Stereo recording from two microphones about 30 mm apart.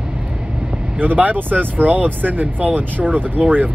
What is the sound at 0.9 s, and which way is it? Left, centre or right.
Speech, right.